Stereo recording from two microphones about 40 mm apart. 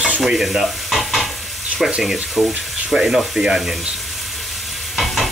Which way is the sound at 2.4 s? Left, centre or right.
Centre.